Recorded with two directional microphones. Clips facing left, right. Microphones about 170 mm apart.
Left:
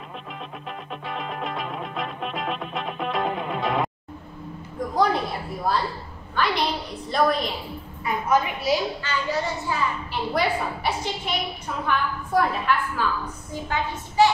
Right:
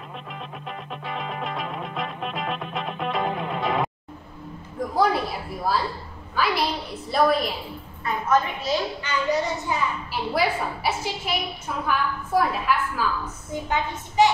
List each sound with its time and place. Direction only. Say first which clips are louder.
1.0 s music: even; centre (ahead or behind)
4.9 s a sound: even; 5° right (ahead or behind)
6.3 s a woman's voice: even; 5° right (ahead or behind)
8.0 s a woman's voice: even; 10° left (ahead or behind)
9.0 s a woman's voice: right 2 dB; 20° right (ahead or behind)
10.1 s a woman's voice: even; 5° right (ahead or behind)
13.5 s a woman's voice: right 2 dB; 20° right (ahead or behind)